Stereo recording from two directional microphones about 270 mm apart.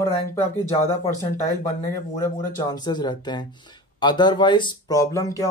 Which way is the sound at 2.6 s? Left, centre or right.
Centre.